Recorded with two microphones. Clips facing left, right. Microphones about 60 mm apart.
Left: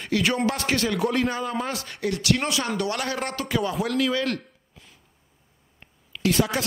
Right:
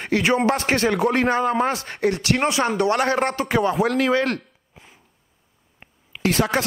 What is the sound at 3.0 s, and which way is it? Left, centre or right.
Speech, right.